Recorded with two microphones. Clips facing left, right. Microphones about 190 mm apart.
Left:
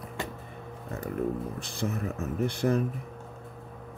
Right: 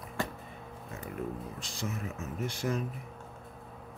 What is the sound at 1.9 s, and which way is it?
Speech, 35° left (ahead or behind).